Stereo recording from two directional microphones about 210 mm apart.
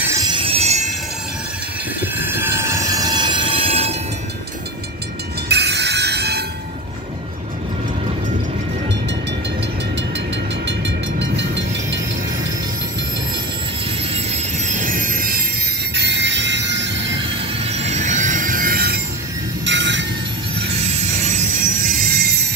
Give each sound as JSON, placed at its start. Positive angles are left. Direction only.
{"t": 0.1, "sound": "train wheels squealing", "side_deg": -20}
{"t": 2.1, "sound": "train", "side_deg": -10}
{"t": 5.5, "sound": "music", "side_deg": -50}
{"t": 10.7, "sound": "vehicle", "side_deg": -60}
{"t": 14.1, "sound": "train", "side_deg": -35}
{"t": 15.9, "sound": "train", "side_deg": -55}
{"t": 17.6, "sound": "train", "side_deg": -30}
{"t": 19.6, "sound": "a sound", "side_deg": -60}
{"t": 22.0, "sound": "music", "side_deg": -45}